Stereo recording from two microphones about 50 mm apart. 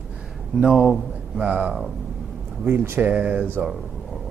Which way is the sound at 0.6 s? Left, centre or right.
Centre.